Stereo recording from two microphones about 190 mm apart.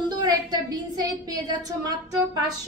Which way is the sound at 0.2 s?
20° right (ahead or behind).